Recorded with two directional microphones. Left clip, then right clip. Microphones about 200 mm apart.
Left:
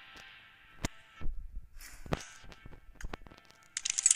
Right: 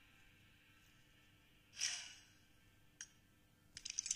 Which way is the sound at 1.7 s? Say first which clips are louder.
Right 10 dB; 35° left (ahead or behind).